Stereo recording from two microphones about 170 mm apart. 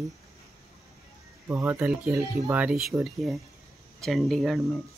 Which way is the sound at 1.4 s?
10° right (ahead or behind).